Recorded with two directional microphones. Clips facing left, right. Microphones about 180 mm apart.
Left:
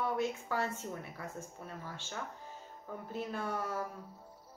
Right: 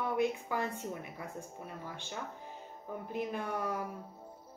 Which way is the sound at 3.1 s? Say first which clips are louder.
Right 1 dB; 15° right (ahead or behind).